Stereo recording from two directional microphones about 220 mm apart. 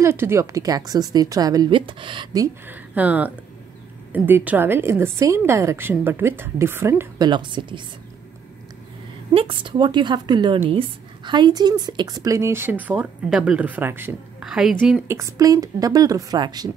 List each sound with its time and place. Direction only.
0.0 s a woman's voice: 10° right (ahead or behind)
9.3 s a woman's voice: 25° right (ahead or behind); by 15.1 s 5° right (ahead or behind)
15.1 s a woman's voice: 15° right (ahead or behind)